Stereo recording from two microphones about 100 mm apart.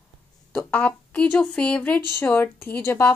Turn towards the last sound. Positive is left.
turn(degrees=30)  # may be behind; listen again after turning